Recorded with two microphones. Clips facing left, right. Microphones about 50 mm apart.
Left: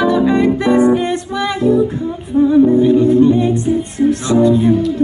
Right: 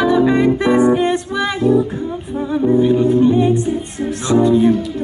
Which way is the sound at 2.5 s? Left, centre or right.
Centre.